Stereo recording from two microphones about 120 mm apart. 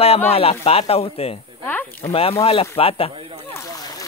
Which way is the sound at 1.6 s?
15° left (ahead or behind).